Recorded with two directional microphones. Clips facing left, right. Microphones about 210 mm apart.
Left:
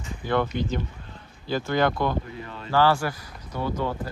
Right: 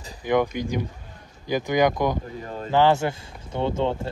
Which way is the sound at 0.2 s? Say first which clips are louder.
Right 3 dB; 15° right (ahead or behind).